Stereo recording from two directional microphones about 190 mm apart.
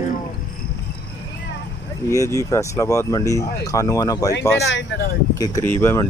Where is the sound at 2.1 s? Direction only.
15° left (ahead or behind).